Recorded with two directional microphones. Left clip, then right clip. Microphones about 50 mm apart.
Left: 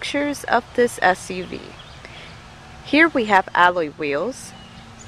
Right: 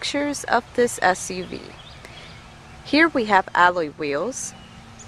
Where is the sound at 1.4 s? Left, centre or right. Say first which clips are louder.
Left 1 dB; right.